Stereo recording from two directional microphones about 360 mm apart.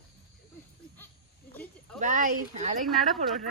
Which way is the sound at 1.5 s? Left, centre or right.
Centre.